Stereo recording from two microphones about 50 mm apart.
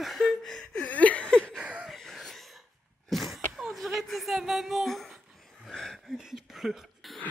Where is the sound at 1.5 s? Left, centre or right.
Right.